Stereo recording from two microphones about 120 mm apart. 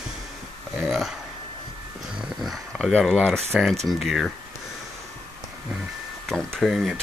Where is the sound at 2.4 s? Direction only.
Centre (ahead or behind).